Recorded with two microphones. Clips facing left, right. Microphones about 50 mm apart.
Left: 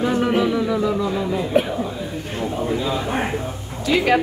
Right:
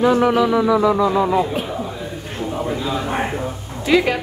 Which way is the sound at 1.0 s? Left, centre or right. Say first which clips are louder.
Right 6 dB; right.